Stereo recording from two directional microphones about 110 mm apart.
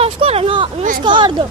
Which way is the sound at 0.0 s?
65° right (ahead or behind).